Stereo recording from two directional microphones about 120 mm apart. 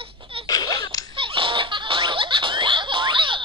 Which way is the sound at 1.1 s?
45° right (ahead or behind).